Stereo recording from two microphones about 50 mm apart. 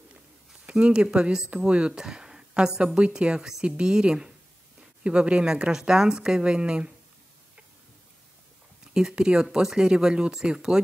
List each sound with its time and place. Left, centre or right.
0.7 s speech: centre
8.9 s speech: centre